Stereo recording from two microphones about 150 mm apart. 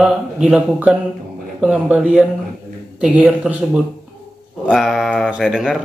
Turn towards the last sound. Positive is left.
turn(degrees=0)  # may be behind; listen again after turning